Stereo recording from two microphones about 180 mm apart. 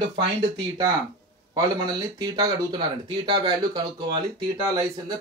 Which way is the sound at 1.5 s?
20° right (ahead or behind).